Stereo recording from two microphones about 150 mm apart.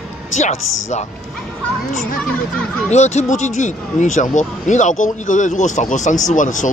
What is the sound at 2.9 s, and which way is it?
Speech, 50° left (ahead or behind).